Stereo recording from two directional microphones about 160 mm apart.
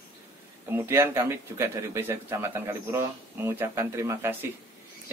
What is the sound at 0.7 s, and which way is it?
A man's voice, 15° right (ahead or behind).